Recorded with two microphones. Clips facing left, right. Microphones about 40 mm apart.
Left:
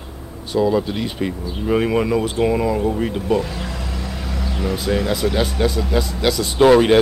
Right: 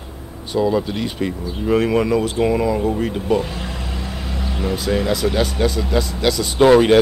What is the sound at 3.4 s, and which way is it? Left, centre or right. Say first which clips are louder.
Vehicle: even; right.